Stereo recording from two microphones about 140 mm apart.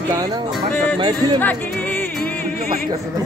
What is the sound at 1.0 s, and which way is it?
Speech, 30° right (ahead or behind).